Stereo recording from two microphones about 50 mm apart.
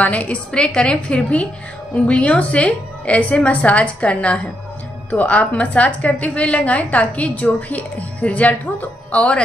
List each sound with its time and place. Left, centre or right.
0.0 s a woman's voice: left